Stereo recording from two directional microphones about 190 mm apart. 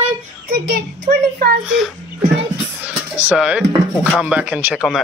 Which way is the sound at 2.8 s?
10° right (ahead or behind).